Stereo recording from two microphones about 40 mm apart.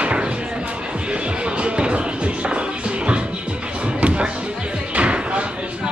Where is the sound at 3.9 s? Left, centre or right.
Right.